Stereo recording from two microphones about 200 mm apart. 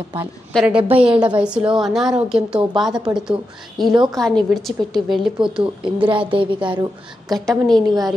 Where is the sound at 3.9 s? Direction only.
20° right (ahead or behind).